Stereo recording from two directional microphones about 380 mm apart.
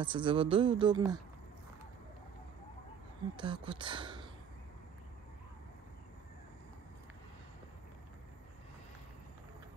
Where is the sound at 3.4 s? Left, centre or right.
Centre.